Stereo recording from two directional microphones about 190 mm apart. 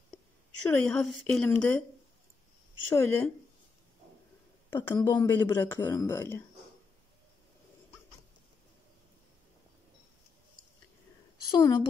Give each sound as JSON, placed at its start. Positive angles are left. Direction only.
{"t": 0.7, "sound": "speech", "side_deg": 5}
{"t": 2.9, "sound": "speech", "side_deg": 15}
{"t": 4.6, "sound": "speech", "side_deg": 10}
{"t": 11.4, "sound": "a woman's voice", "side_deg": 20}